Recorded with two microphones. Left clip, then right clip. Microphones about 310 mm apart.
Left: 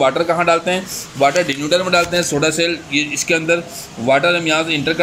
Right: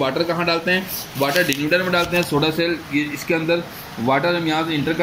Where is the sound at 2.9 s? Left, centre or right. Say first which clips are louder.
Left 4 dB; centre.